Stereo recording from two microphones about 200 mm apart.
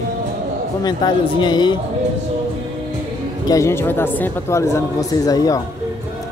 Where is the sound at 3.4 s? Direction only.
15° left (ahead or behind).